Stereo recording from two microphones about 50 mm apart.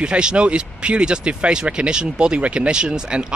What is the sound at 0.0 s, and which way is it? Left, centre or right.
Speech, centre.